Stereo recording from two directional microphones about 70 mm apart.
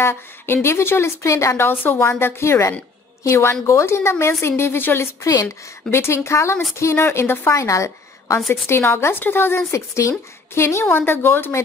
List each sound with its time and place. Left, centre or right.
0.0 s speech: left
1.7 s speech: left
5.4 s speech: left
7.6 s a woman's voice: left
8.5 s speech: left